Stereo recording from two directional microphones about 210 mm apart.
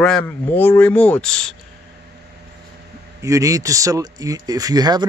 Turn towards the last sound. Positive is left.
turn(degrees=-20)  # may be behind; listen again after turning